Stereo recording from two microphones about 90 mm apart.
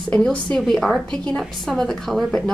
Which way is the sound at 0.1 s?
10° left (ahead or behind).